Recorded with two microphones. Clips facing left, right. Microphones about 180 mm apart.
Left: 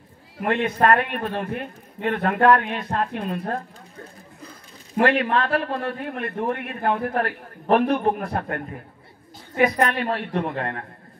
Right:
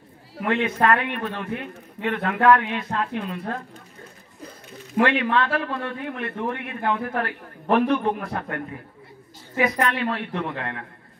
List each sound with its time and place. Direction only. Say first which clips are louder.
0.5 s a man's voice: left 1 dB; 35° left (ahead or behind)
5.0 s a man's voice: left 1 dB; 40° left (ahead or behind)
9.6 s a man's voice: left 2 dB; 40° left (ahead or behind)